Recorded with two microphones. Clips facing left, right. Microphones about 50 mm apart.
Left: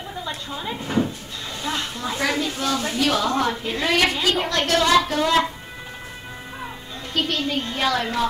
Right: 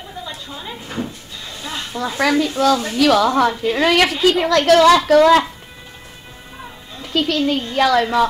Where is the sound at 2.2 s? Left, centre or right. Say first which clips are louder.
Right 8 dB; right.